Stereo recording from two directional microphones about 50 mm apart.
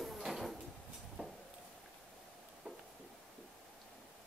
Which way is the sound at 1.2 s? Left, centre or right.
Left.